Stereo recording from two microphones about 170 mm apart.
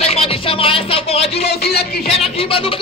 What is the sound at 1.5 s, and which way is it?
Speech, 70° left (ahead or behind).